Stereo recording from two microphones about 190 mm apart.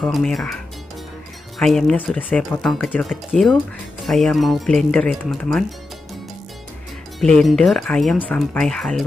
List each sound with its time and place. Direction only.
0.0 s speech: centre (ahead or behind)
1.6 s speech: centre (ahead or behind)
7.2 s speech: centre (ahead or behind)